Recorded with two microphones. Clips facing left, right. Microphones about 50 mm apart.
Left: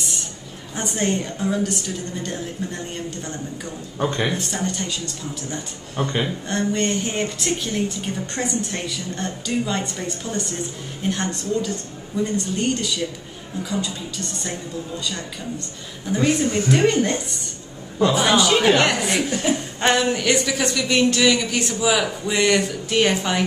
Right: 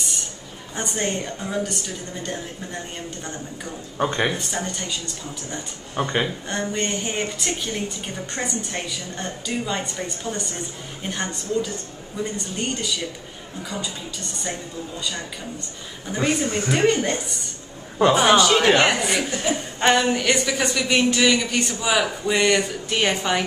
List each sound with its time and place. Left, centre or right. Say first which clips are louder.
0.7 s a woman's voice: left 3 dB; centre
4.0 s a woman's voice: even; centre
16.1 s a woman's voice: left 3 dB; centre
17.9 s a man's voice: right 2 dB; right
18.3 s a woman's voice: right 1 dB; centre